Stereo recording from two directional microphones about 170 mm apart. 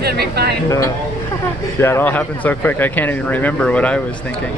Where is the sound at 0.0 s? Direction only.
70° right (ahead or behind).